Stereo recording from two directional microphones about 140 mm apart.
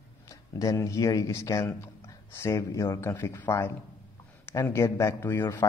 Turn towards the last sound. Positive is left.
turn(degrees=15)  # may be behind; listen again after turning